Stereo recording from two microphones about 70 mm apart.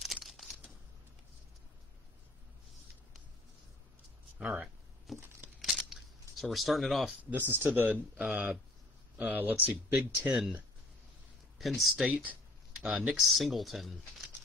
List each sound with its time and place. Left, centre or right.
0.0 s a sound: centre
4.4 s speech: centre
5.1 s tearing: centre
5.6 s a sound: centre
6.4 s speech: centre
7.2 s speech: right
11.5 s speech: centre
12.8 s speech: centre
13.3 s speech: centre